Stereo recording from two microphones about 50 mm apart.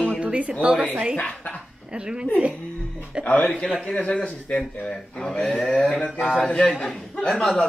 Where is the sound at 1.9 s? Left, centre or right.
Centre.